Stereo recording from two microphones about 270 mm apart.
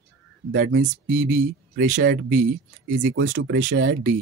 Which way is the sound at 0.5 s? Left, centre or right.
Right.